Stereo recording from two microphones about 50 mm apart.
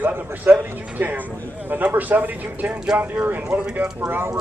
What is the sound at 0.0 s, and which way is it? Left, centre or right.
A man's voice, right.